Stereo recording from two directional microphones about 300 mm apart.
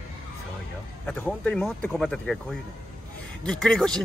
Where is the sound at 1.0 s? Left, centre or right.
Centre.